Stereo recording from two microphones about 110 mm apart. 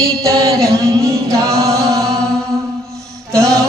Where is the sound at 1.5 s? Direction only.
30° right (ahead or behind).